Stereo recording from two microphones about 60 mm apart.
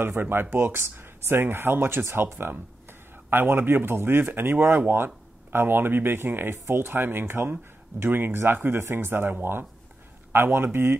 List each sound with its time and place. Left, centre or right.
0.0 s speech: right